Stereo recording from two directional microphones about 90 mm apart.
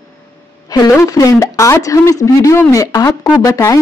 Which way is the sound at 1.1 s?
40° left (ahead or behind).